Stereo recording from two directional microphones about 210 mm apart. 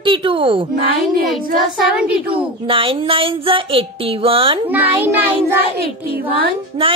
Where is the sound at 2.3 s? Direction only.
25° right (ahead or behind).